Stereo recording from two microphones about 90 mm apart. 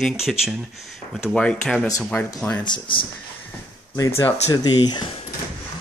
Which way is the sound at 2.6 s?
65° left (ahead or behind).